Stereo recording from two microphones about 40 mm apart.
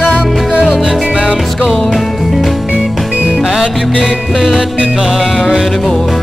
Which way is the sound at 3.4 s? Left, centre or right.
Centre.